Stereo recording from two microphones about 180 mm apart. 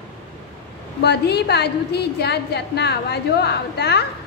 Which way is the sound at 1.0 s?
70° left (ahead or behind).